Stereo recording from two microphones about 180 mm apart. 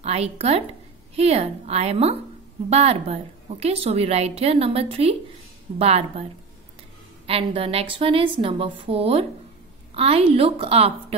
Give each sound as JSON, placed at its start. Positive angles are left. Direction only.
{"t": 0.0, "sound": "a woman's voice", "side_deg": -35}
{"t": 7.2, "sound": "a woman's voice", "side_deg": -30}